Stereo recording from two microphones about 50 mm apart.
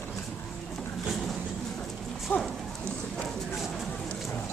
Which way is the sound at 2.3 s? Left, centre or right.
Left.